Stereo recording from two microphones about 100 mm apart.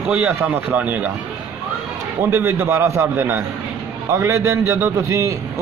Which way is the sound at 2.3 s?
25° right (ahead or behind).